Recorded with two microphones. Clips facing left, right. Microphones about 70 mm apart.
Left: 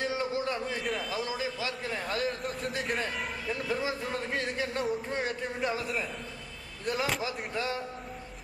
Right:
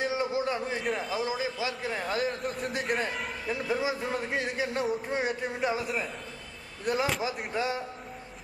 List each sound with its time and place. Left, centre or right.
0.0 s a sound: centre
0.7 s a man's voice: centre
1.6 s speech: centre
2.4 s a man's voice: centre
3.4 s a man's voice: centre
7.5 s a man's voice: centre